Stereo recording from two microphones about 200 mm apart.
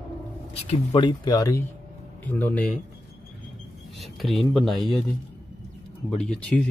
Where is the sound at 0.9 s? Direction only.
20° left (ahead or behind).